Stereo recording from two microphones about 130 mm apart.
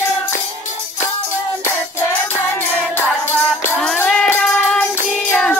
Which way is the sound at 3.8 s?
5° left (ahead or behind).